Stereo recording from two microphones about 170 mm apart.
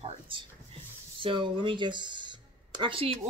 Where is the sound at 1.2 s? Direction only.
30° right (ahead or behind).